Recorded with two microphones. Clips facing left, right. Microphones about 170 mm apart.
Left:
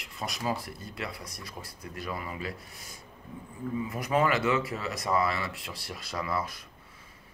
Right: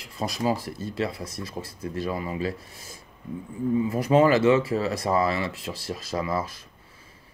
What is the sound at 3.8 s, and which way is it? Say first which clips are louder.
Speech: right 7 dB; 30° right (ahead or behind).